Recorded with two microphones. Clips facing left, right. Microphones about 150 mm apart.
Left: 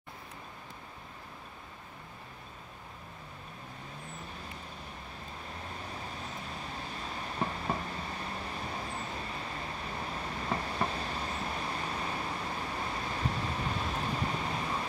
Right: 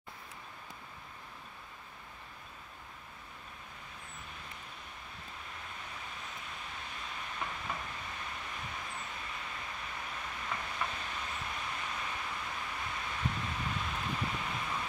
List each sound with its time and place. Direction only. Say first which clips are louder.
5.8 s vehicle: left 5 dB; 35° left (ahead or behind)